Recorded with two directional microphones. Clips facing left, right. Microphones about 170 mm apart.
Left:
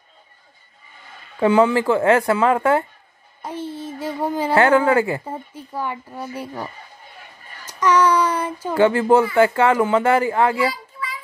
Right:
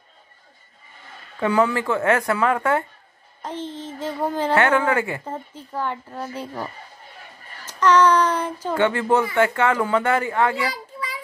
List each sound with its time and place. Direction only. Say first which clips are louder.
1.4 s speech: left 5 dB; 25° left (ahead or behind)
3.4 s speech: left 2 dB; 10° left (ahead or behind)
4.6 s speech: left 5 dB; 30° left (ahead or behind)
5.2 s speech: left 1 dB; 10° left (ahead or behind)
7.6 s child singing: right 1 dB; 10° left (ahead or behind)
8.7 s speech: left 5 dB; 30° left (ahead or behind)